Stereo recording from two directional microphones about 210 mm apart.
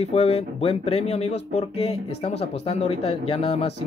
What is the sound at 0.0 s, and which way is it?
Speech, 30° left (ahead or behind).